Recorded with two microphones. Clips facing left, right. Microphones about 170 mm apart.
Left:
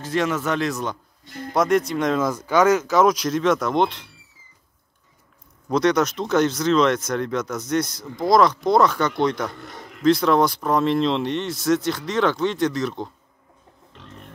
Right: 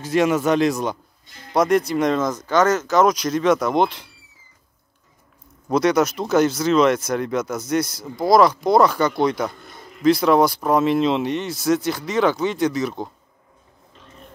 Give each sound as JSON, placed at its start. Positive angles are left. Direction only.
{"t": 0.0, "sound": "speech", "side_deg": -10}
{"t": 1.2, "sound": "music", "side_deg": 55}
{"t": 1.5, "sound": "speech", "side_deg": 0}
{"t": 5.7, "sound": "speech", "side_deg": -5}
{"t": 9.6, "sound": "speech", "side_deg": 85}
{"t": 10.0, "sound": "speech", "side_deg": -5}